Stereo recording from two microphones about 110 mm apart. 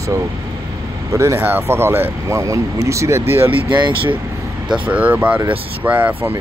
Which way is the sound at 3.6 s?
45° right (ahead or behind).